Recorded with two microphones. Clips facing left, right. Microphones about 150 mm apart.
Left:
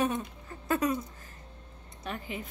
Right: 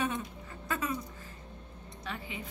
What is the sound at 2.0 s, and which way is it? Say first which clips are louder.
Speech: left 4 dB; 45° left (ahead or behind).